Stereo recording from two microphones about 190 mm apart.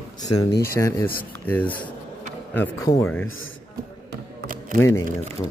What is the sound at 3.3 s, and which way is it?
Speech, 90° left.